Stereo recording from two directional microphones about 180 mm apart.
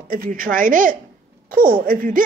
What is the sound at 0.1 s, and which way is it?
A woman's voice, 50° right (ahead or behind).